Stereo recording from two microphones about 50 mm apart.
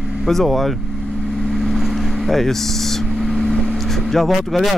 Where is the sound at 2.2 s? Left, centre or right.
Centre.